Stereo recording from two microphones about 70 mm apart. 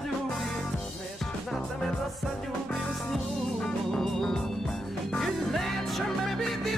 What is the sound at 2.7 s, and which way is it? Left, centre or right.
Music, centre.